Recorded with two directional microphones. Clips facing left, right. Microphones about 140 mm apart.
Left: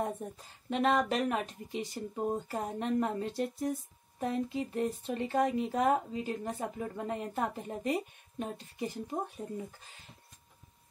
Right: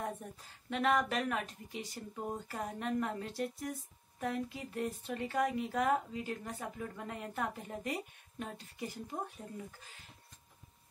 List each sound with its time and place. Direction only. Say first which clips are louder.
0.2 s speech: left 6 dB; 25° left (ahead or behind)